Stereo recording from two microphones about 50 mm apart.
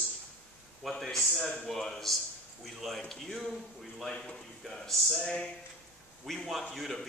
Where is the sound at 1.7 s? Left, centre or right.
Centre.